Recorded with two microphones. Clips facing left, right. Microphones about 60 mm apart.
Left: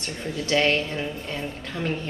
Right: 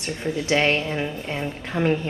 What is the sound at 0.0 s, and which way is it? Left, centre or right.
A woman's voice, centre.